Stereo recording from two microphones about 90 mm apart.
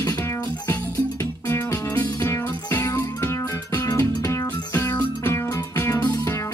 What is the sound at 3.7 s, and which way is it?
Music, 40° left (ahead or behind).